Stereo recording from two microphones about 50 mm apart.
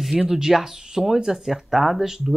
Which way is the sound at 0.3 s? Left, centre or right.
Centre.